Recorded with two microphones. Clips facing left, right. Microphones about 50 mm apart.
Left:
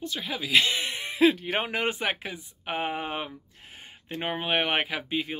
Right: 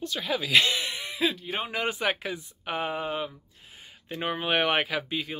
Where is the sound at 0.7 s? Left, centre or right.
Left.